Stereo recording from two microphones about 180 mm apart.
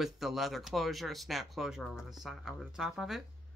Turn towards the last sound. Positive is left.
turn(degrees=0)  # may be behind; listen again after turning